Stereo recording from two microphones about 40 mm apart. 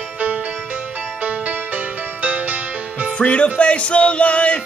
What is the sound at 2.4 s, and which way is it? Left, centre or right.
Music, right.